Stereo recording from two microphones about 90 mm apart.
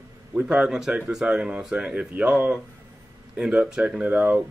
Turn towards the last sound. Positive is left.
turn(degrees=-20)  # may be behind; listen again after turning